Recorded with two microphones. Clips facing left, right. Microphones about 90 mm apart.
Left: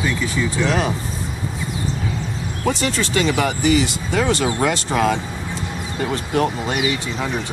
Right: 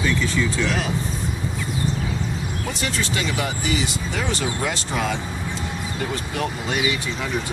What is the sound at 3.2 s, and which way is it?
Speech, 65° left (ahead or behind).